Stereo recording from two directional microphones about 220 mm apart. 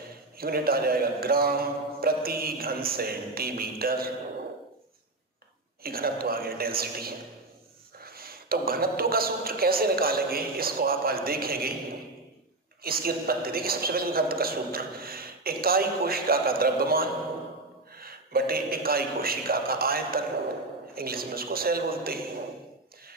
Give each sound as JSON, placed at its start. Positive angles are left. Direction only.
{"t": 0.4, "sound": "a man's voice", "side_deg": -45}
{"t": 5.8, "sound": "a man's voice", "side_deg": -45}
{"t": 12.8, "sound": "a man's voice", "side_deg": -45}